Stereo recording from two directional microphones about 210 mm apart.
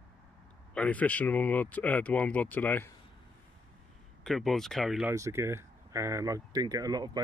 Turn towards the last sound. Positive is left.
turn(degrees=-20)  # may be behind; listen again after turning